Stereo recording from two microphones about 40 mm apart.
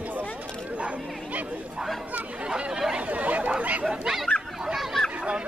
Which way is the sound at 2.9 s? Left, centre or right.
Right.